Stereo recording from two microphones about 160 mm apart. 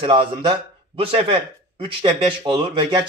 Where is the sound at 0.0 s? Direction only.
30° right (ahead or behind).